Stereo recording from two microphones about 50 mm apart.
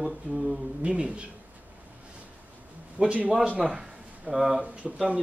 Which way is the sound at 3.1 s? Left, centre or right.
Right.